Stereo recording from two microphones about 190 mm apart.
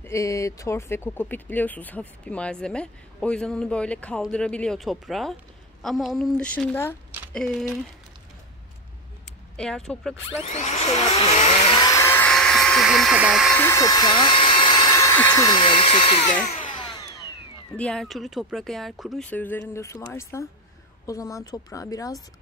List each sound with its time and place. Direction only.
0.0 s speech: 15° left (ahead or behind)
9.6 s speech: 5° left (ahead or behind)
10.4 s speech: 35° left (ahead or behind)
11.8 s hair dryer: 15° left (ahead or behind); by 13.6 s centre (ahead or behind)
13.6 s speech: 15° left (ahead or behind); by 16.3 s 30° left (ahead or behind)
17.7 s speech: 5° left (ahead or behind)